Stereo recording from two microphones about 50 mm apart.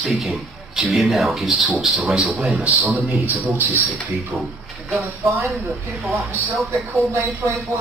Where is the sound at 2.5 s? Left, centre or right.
Right.